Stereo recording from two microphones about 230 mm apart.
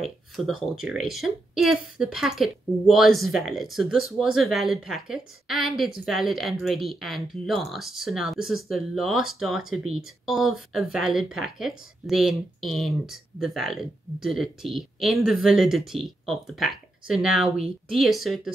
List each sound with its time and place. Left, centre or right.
0.0 s a woman's voice: centre